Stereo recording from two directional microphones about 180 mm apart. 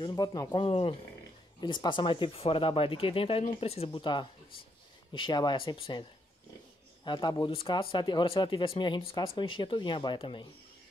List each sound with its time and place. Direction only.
0.0 s speech: 20° left (ahead or behind)
7.1 s speech: 25° left (ahead or behind)